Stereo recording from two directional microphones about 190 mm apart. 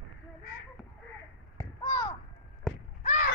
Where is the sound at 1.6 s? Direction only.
20° left (ahead or behind).